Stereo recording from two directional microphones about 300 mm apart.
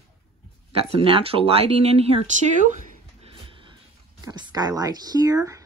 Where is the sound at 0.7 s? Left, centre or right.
Centre.